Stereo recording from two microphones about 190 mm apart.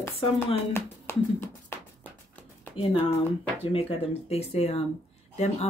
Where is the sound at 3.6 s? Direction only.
30° left (ahead or behind).